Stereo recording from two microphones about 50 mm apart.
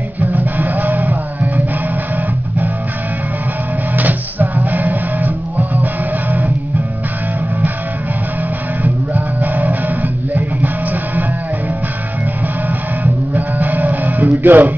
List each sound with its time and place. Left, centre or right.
0.2 s music: right
3.9 s music: right
8.8 s music: right
12.6 s music: right